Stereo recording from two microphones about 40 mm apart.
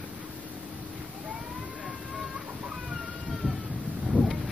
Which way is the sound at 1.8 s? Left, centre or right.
Centre.